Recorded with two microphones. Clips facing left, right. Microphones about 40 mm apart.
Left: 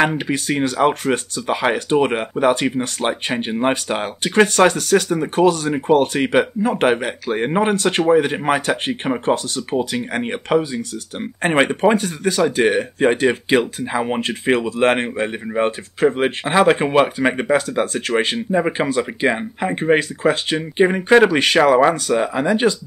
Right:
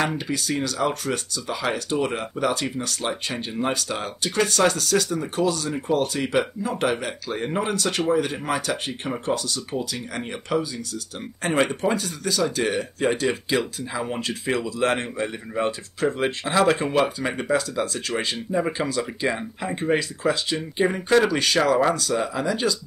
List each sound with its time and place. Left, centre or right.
0.0 s speech: left